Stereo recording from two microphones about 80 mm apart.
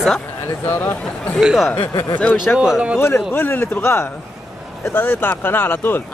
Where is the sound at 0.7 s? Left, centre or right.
Left.